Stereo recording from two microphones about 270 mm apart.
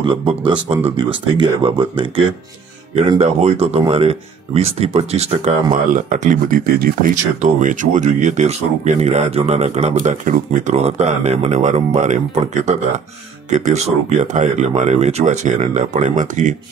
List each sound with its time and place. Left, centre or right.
0.0 s speech: centre